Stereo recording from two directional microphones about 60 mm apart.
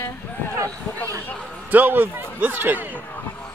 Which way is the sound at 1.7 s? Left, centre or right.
Right.